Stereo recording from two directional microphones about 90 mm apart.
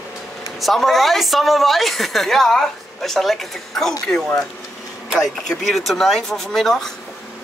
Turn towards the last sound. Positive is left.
turn(degrees=5)  # may be behind; listen again after turning